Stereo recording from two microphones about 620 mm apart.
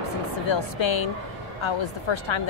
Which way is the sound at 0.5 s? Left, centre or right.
Left.